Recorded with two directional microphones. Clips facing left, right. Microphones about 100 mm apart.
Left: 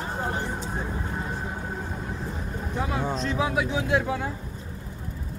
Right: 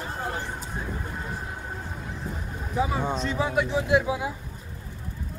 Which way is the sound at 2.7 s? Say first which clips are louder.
Right 3 dB; 5° right (ahead or behind).